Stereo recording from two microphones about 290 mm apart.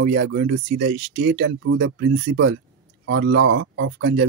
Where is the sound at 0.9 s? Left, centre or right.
Right.